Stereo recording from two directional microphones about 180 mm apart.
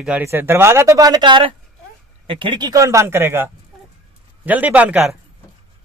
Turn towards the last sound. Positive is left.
turn(degrees=-5)  # may be behind; listen again after turning